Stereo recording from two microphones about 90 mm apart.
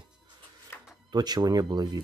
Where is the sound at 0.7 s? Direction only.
25° left (ahead or behind).